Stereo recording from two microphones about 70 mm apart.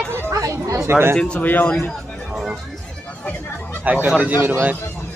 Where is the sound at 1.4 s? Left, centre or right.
Left.